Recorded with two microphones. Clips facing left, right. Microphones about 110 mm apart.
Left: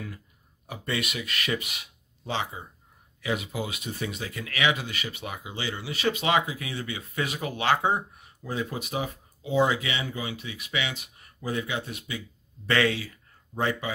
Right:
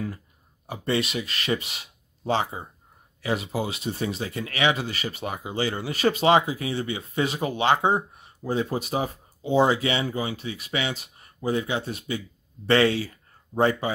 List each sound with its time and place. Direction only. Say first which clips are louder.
0.7 s speech: right 6 dB; 30° right (ahead or behind)